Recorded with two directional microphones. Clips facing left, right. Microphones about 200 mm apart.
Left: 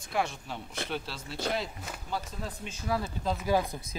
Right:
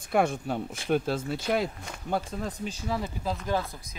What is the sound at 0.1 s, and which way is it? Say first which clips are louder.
Speech: right 7 dB; 50° right (ahead or behind).